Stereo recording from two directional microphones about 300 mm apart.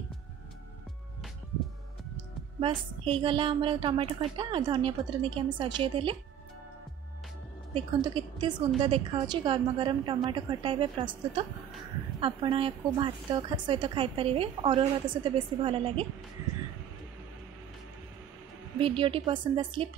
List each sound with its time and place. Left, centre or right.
2.6 s a woman's voice: centre
7.7 s a woman's voice: centre
18.8 s a woman's voice: centre